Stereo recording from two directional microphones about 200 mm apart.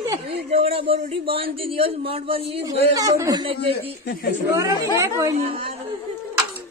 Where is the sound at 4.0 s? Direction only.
55° left (ahead or behind).